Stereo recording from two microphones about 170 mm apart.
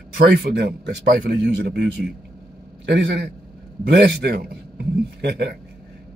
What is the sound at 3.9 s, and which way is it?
A man's voice, 70° right (ahead or behind).